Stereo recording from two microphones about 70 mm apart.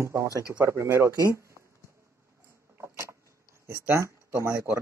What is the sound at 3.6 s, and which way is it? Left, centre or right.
Speech, right.